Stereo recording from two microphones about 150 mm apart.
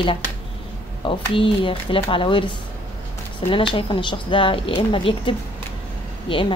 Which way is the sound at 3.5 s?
35° left (ahead or behind).